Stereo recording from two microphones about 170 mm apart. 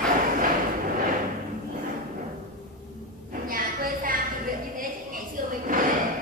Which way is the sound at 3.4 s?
55° right (ahead or behind).